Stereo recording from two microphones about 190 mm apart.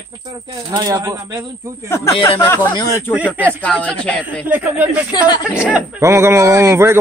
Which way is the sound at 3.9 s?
5° left (ahead or behind).